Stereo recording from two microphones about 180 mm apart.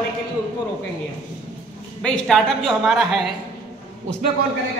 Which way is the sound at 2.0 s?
5° left (ahead or behind).